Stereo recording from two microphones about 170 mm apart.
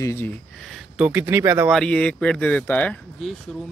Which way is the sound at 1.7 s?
5° left (ahead or behind).